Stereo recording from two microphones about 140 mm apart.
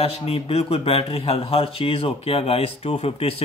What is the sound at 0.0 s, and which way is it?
A man's voice, 45° left (ahead or behind).